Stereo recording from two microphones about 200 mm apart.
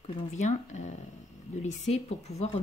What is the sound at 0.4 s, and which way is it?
Speech, 35° left (ahead or behind).